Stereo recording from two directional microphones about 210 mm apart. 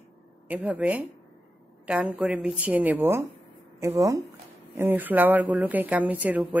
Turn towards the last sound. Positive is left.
turn(degrees=-5)  # may be behind; listen again after turning